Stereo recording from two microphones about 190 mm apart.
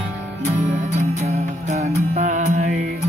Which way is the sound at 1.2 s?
35° right (ahead or behind).